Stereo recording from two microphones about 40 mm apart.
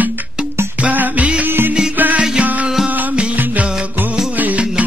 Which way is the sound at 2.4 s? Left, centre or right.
Right.